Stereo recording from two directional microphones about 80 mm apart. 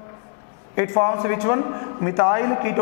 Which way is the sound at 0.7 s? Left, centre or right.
Centre.